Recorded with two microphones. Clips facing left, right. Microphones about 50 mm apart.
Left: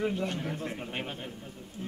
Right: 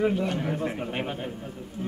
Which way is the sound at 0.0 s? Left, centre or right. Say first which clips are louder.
Right 6 dB; centre.